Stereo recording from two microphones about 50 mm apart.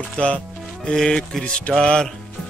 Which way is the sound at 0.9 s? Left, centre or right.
Centre.